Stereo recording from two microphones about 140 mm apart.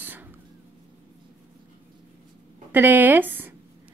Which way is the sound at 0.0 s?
15° right (ahead or behind).